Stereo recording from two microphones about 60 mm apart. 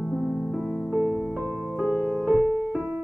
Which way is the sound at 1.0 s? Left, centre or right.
Left.